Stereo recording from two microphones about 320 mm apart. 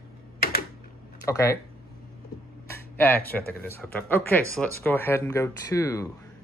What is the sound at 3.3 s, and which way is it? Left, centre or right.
Speech, centre.